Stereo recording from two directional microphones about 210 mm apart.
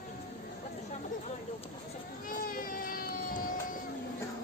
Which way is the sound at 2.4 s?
45° left (ahead or behind).